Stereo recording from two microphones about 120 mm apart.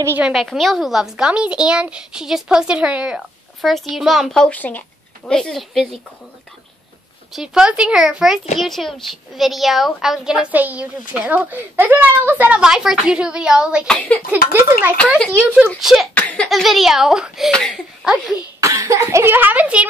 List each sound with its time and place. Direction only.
0.2 s a woman's voice: centre (ahead or behind)
7.3 s a woman's voice: 5° right (ahead or behind)
13.8 s speech: 10° left (ahead or behind)
14.3 s a woman's voice: 15° right (ahead or behind)
15.8 s speech: 5° right (ahead or behind)
16.2 s laughter: 10° left (ahead or behind)
16.4 s speech: centre (ahead or behind)
18.0 s speech: 5° right (ahead or behind)
18.6 s speech: 25° right (ahead or behind)